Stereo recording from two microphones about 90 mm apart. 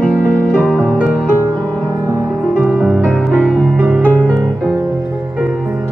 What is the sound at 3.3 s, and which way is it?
Music, 15° left (ahead or behind).